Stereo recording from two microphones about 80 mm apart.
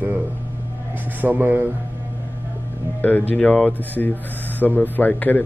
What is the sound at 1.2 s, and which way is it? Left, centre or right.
Speech, right.